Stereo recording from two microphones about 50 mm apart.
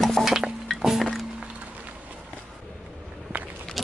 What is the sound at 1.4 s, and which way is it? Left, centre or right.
Music, right.